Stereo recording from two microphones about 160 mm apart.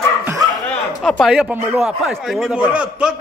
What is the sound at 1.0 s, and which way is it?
Speech, centre (ahead or behind).